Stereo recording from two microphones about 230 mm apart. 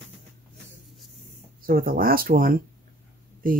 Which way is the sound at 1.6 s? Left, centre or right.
Right.